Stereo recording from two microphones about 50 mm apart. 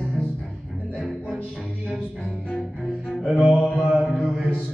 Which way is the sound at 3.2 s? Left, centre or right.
Centre.